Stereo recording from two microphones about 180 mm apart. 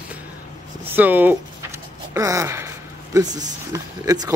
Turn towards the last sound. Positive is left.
turn(degrees=-20)  # may be behind; listen again after turning